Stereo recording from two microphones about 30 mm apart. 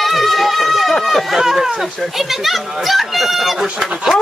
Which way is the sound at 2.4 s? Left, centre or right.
Centre.